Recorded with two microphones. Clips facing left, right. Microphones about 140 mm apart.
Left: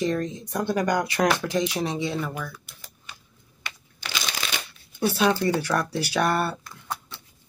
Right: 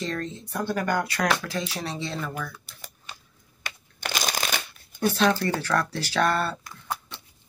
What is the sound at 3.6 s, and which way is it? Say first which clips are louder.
Shuffling cards: right 3 dB; 45° right (ahead or behind).